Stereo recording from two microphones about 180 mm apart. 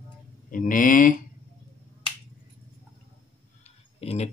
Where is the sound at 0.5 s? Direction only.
50° left (ahead or behind).